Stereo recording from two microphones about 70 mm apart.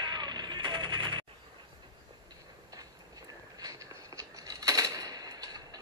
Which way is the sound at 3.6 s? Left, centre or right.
Right.